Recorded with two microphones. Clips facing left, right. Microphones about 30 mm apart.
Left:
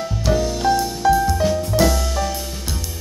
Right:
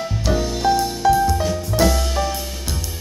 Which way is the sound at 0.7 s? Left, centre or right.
Centre.